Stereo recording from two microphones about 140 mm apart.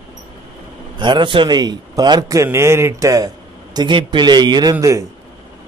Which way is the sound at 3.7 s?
35° right (ahead or behind).